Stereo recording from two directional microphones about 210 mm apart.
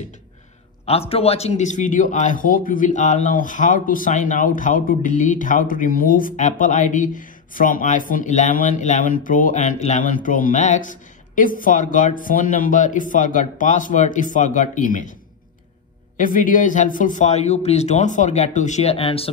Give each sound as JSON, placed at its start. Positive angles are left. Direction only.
{"t": 0.8, "sound": "a man's voice", "side_deg": 30}
{"t": 16.2, "sound": "a man's voice", "side_deg": 40}